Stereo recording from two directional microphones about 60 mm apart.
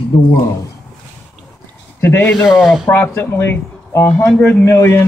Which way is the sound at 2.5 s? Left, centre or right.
Centre.